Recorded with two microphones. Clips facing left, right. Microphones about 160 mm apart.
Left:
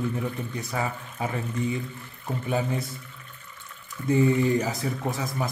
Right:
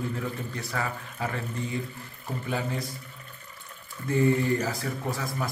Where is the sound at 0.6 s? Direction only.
20° left (ahead or behind).